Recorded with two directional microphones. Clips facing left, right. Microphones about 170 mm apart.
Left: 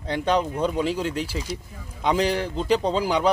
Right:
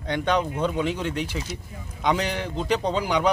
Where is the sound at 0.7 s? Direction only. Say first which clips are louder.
Left 1 dB; 35° left (ahead or behind).